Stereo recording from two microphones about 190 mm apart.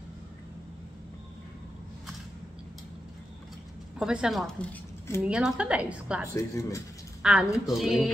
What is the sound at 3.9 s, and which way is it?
Speech, 5° right (ahead or behind).